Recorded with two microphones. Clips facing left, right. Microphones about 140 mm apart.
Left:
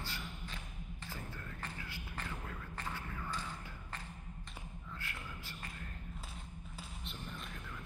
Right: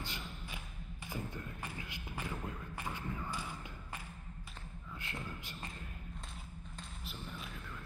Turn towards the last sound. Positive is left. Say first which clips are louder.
# even
turn(degrees=-5)  # may be behind; listen again after turning